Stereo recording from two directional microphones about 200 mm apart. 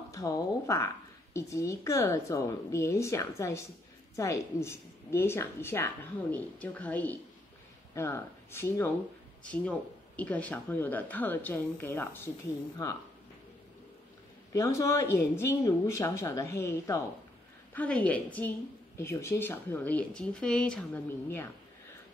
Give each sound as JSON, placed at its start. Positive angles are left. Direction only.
{"t": 0.1, "sound": "speech", "side_deg": 15}
{"t": 14.5, "sound": "speech", "side_deg": 15}